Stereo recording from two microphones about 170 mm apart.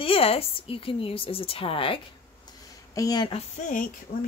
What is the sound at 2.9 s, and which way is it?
Speech, 20° left (ahead or behind).